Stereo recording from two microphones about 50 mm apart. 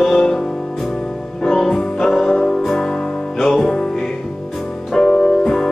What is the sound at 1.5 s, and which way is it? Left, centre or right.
Music, centre.